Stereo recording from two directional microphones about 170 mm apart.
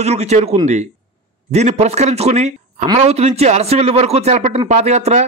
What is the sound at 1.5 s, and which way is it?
A man's voice, 40° right (ahead or behind).